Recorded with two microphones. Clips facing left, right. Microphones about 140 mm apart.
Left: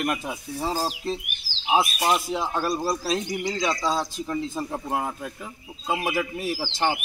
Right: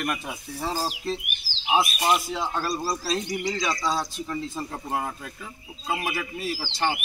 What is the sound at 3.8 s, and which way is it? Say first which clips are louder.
A man's voice: left 2 dB; 20° left (ahead or behind).